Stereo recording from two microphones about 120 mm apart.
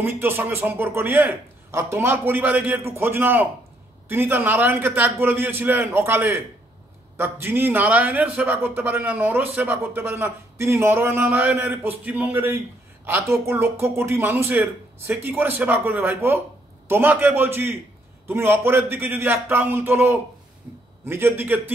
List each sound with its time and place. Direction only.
0.0 s a man's voice: 20° right (ahead or behind)